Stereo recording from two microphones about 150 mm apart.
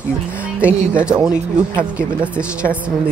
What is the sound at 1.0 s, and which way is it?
Speech, 5° right (ahead or behind).